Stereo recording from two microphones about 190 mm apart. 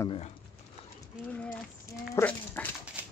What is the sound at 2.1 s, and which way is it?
Dog, 10° left (ahead or behind).